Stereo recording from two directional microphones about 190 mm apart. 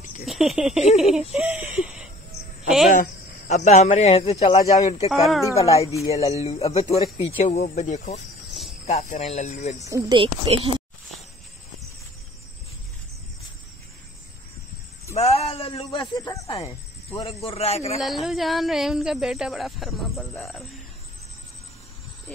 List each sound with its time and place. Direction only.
0.2 s speech: centre (ahead or behind)
1.3 s a sound: 5° right (ahead or behind)
2.9 s speech: 45° left (ahead or behind)
4.6 s speech: 20° left (ahead or behind)
5.1 s speech: centre (ahead or behind)
5.9 s speech: 15° left (ahead or behind)
6.3 s speech: 35° left (ahead or behind)
8.5 s cricket: centre (ahead or behind)
8.8 s speech: 35° left (ahead or behind)
9.8 s speech: 20° right (ahead or behind)
15.1 s speech: 35° left (ahead or behind); by 16.4 s 15° left (ahead or behind)
17.1 s speech: 30° left (ahead or behind)
18.0 s speech: centre (ahead or behind)